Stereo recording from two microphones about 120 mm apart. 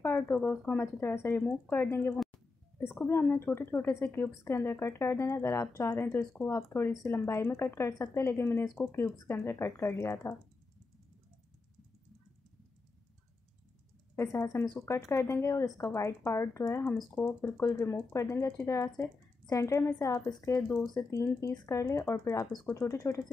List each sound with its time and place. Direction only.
0.0 s a woman's voice: 15° left (ahead or behind)
14.1 s a woman's voice: 25° left (ahead or behind)
20.6 s speech: 10° left (ahead or behind)
20.9 s a woman's voice: 25° left (ahead or behind)